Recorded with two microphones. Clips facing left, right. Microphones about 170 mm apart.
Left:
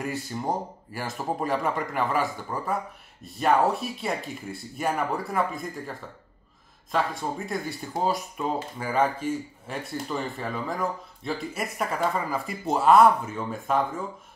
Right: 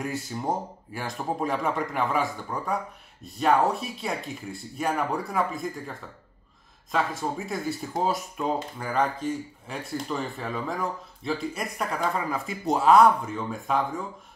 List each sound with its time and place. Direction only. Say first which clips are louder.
0.0 s speech: even; centre (ahead or behind)